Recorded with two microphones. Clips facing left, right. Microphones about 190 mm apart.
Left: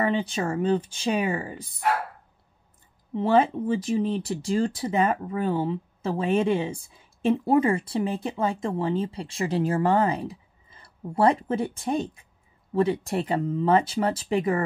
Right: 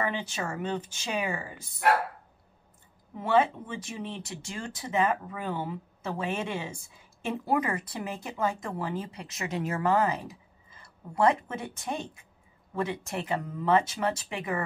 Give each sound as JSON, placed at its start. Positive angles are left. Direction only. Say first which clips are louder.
{"t": 0.0, "sound": "speech", "louder": "left 7 dB", "side_deg": 30}
{"t": 3.2, "sound": "speech", "louder": "left 4 dB", "side_deg": 35}